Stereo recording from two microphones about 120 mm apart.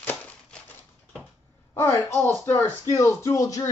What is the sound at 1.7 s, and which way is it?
A woman's voice, 20° left (ahead or behind).